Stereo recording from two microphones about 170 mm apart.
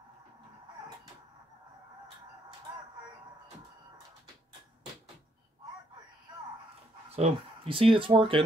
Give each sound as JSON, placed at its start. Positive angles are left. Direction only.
{"t": 7.2, "sound": "speech", "side_deg": -35}